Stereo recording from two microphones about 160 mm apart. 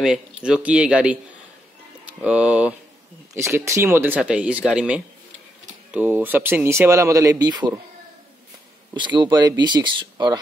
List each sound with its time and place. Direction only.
0.4 s speech: 5° right (ahead or behind); by 7.8 s 25° right (ahead or behind)
8.9 s speech: 30° right (ahead or behind)